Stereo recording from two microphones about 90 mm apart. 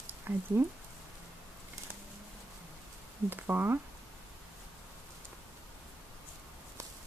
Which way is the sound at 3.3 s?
20° right (ahead or behind).